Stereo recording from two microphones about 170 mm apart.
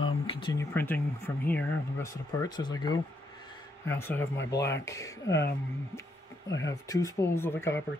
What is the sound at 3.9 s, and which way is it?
Speech, 10° left (ahead or behind).